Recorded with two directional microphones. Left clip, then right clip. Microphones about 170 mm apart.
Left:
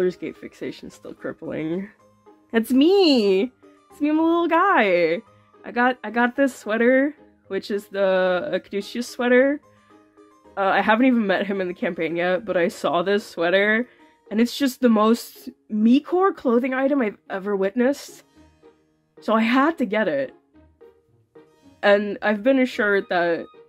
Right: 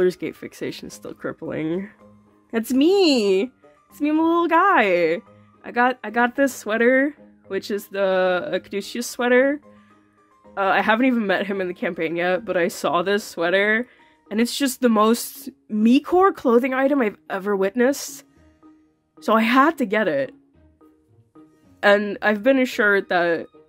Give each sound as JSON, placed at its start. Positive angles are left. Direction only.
{"t": 0.0, "sound": "speech", "side_deg": -35}
{"t": 2.5, "sound": "speech", "side_deg": -10}
{"t": 21.7, "sound": "speech", "side_deg": -25}